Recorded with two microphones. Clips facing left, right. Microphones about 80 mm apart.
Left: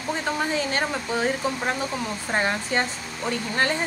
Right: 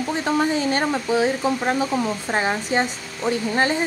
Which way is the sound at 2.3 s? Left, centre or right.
Centre.